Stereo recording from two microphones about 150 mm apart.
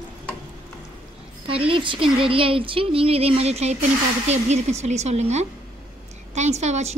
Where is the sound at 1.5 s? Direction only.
35° right (ahead or behind).